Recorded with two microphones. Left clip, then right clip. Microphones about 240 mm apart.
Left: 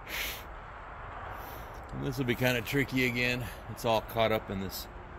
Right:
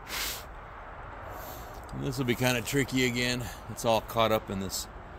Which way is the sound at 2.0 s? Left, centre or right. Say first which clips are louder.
Right 1 dB; right.